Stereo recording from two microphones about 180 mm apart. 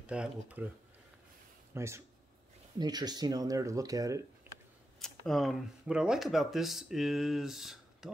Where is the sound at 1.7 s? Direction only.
15° right (ahead or behind).